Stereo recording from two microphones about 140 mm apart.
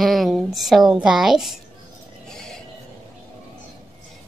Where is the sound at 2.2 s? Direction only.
5° left (ahead or behind).